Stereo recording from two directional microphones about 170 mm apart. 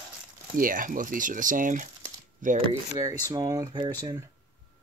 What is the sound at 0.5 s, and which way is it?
Speech, 55° right (ahead or behind).